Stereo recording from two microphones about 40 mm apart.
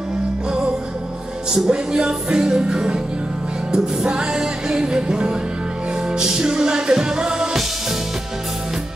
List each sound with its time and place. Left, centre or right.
1.5 s music: centre